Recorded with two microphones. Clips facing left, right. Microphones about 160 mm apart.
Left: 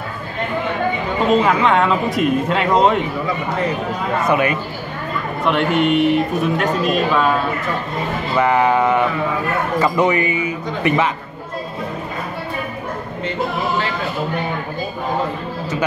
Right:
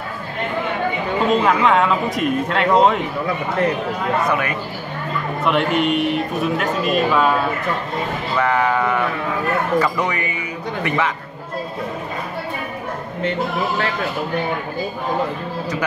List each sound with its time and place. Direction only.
1.4 s a man's voice: centre (ahead or behind)
4.3 s speech: 20° left (ahead or behind)
5.4 s a man's voice: centre (ahead or behind)
8.4 s a man's voice: 20° left (ahead or behind)